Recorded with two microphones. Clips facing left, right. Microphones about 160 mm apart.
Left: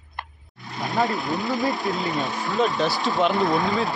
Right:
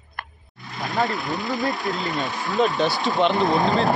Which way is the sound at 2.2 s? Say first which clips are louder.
Right 3 dB; centre (ahead or behind).